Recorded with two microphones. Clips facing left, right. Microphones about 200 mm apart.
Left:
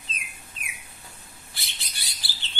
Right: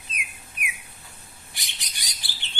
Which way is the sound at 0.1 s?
25° left (ahead or behind).